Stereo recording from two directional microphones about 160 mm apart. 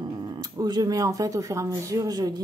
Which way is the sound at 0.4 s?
25° right (ahead or behind).